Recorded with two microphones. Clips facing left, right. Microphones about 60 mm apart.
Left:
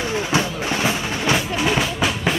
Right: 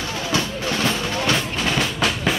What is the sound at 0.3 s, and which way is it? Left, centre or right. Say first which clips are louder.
Music: right 2 dB; centre.